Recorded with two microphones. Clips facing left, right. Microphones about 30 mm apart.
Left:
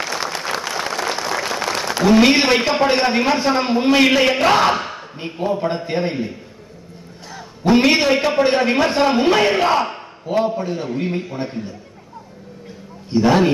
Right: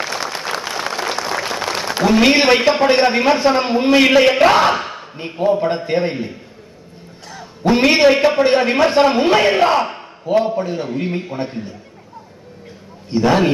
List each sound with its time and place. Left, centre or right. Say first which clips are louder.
0.0 s applause: right 1 dB; centre
1.1 s a sound: right 1 dB; centre
2.7 s a man's voice: right 3 dB; centre
13.2 s a man's voice: even; centre